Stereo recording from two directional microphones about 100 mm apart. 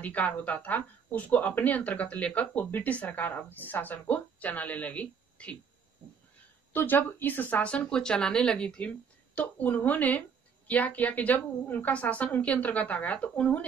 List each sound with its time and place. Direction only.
0.0 s speech: 15° left (ahead or behind)
6.7 s speech: 20° left (ahead or behind)